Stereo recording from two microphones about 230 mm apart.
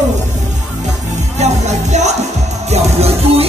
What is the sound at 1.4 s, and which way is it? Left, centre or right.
Music, right.